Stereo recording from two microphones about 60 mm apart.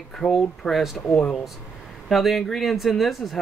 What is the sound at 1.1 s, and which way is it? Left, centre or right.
Speech, centre.